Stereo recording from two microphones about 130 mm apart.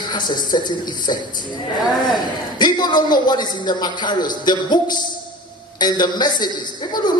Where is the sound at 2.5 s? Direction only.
35° left (ahead or behind).